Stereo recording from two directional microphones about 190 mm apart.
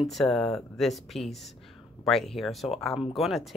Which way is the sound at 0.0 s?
Centre (ahead or behind).